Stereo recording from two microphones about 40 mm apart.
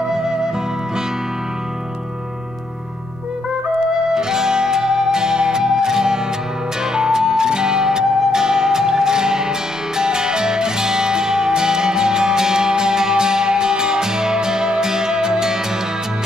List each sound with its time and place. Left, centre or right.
0.1 s music: centre
4.1 s music: centre